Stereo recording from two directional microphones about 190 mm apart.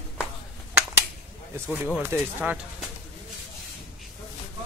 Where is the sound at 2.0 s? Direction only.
10° right (ahead or behind).